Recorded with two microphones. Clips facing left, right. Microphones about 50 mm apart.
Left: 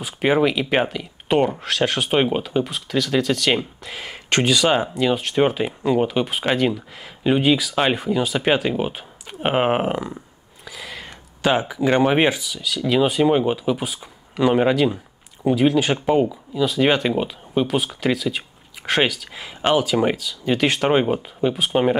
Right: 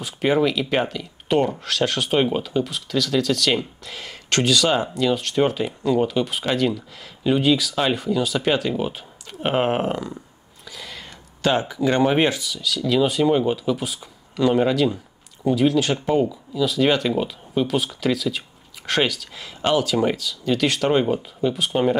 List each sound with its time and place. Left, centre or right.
0.0 s speech: centre